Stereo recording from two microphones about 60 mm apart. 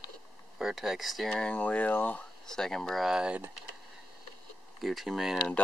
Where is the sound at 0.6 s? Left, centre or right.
Centre.